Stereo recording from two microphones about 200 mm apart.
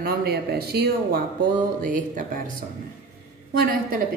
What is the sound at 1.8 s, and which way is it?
Speech, 40° right (ahead or behind).